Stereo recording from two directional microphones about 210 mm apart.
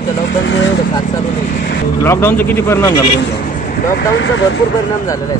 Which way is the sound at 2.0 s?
10° left (ahead or behind).